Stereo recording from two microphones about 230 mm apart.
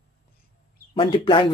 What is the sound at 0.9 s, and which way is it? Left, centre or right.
Speech, left.